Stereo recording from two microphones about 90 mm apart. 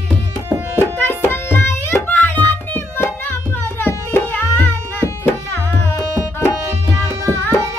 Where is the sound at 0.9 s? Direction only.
25° left (ahead or behind).